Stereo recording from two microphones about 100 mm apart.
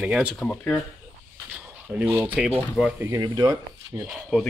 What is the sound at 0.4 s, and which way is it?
Speech, 10° left (ahead or behind).